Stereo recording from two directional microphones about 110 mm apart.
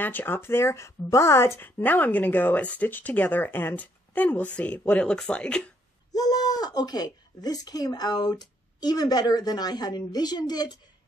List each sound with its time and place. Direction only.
0.0 s speech: 20° left (ahead or behind)
6.1 s speech: 35° left (ahead or behind)